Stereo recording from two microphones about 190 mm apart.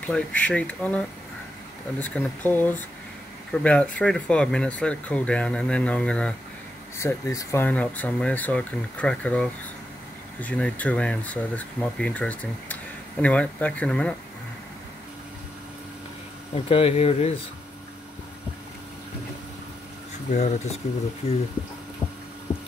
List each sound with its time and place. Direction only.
0.0 s speech: 5° left (ahead or behind)
16.5 s speech: 30° left (ahead or behind)
20.3 s speech: 35° left (ahead or behind)